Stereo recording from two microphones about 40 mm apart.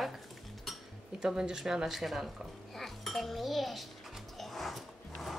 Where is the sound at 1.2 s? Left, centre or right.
Centre.